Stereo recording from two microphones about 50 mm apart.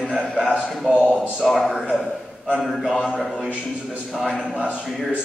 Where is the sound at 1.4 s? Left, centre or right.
Centre.